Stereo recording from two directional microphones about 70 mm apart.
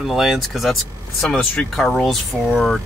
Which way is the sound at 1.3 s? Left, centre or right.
Centre.